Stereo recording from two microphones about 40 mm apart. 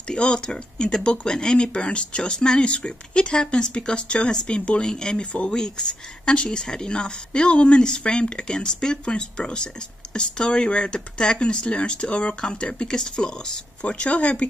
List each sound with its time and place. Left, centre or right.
0.1 s speech: left
13.8 s speech: left